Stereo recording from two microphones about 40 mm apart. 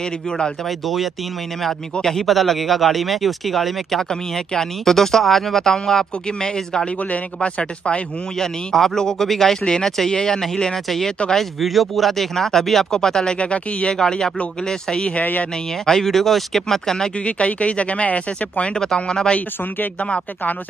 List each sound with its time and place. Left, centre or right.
0.7 s speech: centre
2.0 s speech: centre
7.3 s speech: left
8.4 s speech: centre; by 13.9 s left
13.9 s speech: centre
17.2 s speech: left
18.8 s speech: centre